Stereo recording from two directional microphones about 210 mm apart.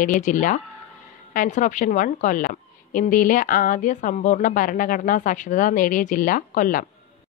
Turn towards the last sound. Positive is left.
turn(degrees=40)  # may be behind; listen again after turning